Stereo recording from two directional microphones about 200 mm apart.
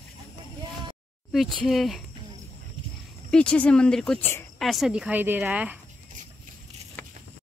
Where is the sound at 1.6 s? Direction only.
Centre (ahead or behind).